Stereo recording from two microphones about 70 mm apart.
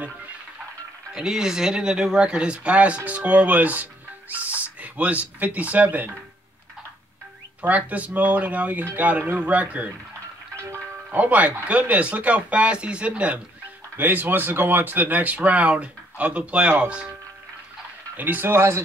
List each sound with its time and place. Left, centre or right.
1.1 s speech: centre
7.6 s speech: right
11.1 s speech: right
13.9 s speech: right
18.1 s speech: right